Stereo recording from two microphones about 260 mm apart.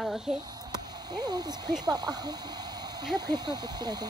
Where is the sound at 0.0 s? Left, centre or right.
Centre.